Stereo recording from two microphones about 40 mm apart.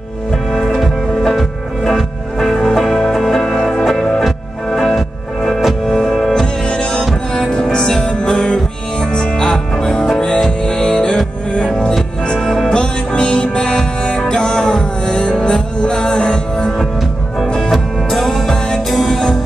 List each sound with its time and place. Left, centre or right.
0.7 s music: centre
6.4 s music: left
12.4 s music: centre
12.6 s music: left
17.6 s music: centre